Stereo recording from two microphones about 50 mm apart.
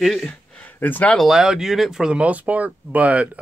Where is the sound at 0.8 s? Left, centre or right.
Left.